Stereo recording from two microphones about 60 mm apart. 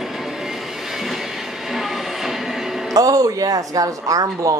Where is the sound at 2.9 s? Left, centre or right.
Right.